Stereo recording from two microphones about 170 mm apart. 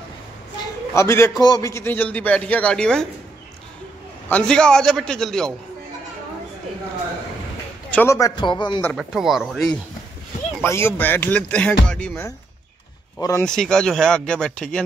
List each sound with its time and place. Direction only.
0.9 s speech: 15° left (ahead or behind)
4.3 s speech: 5° left (ahead or behind)
7.9 s a man's voice: 15° left (ahead or behind)
8.9 s speech: centre (ahead or behind)
10.6 s speech: 15° left (ahead or behind)
13.4 s speech: 5° left (ahead or behind)